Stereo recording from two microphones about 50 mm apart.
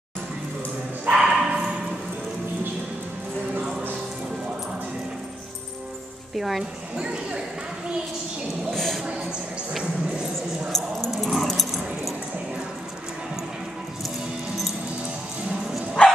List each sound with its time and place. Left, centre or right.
1.1 s bow-wow: centre
6.3 s speech: centre
7.0 s speech: right
8.6 s a sound: centre
10.7 s dog: centre
16.0 s bow-wow: left